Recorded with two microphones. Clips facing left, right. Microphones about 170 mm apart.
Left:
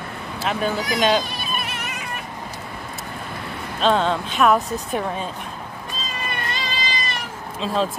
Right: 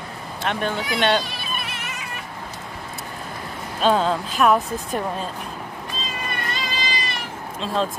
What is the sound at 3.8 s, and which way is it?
A woman's voice, 5° right (ahead or behind).